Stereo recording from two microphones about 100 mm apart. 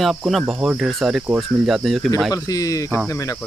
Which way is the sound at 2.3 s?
35° left (ahead or behind).